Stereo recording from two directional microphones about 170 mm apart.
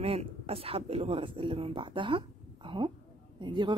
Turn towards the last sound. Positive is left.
turn(degrees=-25)  # may be behind; listen again after turning